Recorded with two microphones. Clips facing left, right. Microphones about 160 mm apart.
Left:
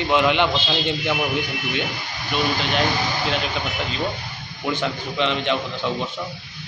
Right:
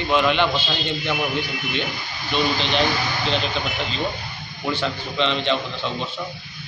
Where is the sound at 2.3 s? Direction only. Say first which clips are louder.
Right 1 dB; 10° left (ahead or behind).